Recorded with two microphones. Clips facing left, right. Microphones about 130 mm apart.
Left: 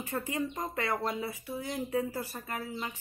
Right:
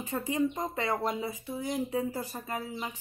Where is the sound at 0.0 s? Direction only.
15° right (ahead or behind).